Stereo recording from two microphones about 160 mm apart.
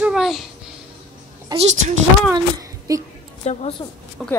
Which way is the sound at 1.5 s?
25° right (ahead or behind).